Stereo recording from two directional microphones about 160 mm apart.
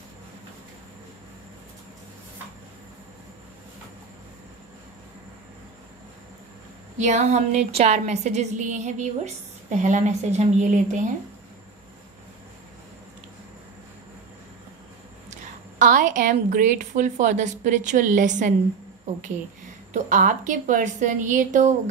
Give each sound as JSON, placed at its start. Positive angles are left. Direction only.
{"t": 7.0, "sound": "a woman's voice", "side_deg": -45}
{"t": 15.8, "sound": "a woman's voice", "side_deg": -55}
{"t": 19.9, "sound": "a woman's voice", "side_deg": -55}